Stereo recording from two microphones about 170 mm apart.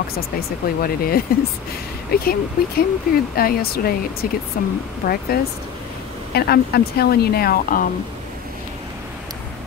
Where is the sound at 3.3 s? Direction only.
60° left (ahead or behind).